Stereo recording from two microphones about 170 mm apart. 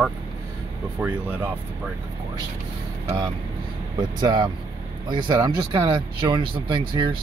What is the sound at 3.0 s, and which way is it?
Speech, 20° right (ahead or behind).